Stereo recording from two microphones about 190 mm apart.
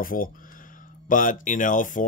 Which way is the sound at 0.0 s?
45° left (ahead or behind).